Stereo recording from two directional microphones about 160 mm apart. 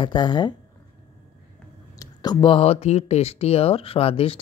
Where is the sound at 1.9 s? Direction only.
25° left (ahead or behind).